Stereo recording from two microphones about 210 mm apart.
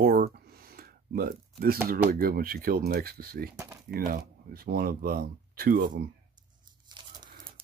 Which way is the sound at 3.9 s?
45° right (ahead or behind).